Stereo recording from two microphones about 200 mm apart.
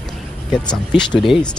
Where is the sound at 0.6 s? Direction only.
20° left (ahead or behind).